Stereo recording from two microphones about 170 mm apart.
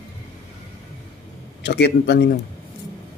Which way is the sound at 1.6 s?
80° left.